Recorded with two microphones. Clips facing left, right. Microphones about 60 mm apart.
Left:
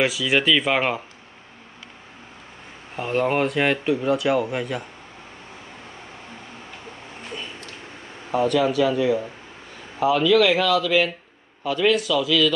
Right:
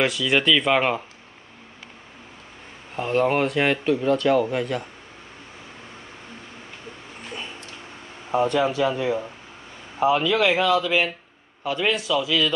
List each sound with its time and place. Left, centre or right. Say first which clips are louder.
0.0 s speech: even; centre
3.0 s speech: right 1 dB; centre
8.3 s speech: left 1 dB; right